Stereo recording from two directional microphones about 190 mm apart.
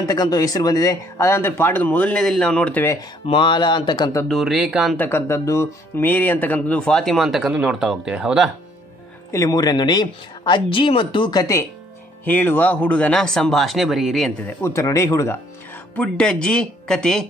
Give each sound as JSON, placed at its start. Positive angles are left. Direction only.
{"t": 0.0, "sound": "speech", "side_deg": 20}
{"t": 3.3, "sound": "speech", "side_deg": 25}
{"t": 4.3, "sound": "speech", "side_deg": 0}
{"t": 4.9, "sound": "speech", "side_deg": 10}
{"t": 9.3, "sound": "speech", "side_deg": 20}
{"t": 14.6, "sound": "speech", "side_deg": 15}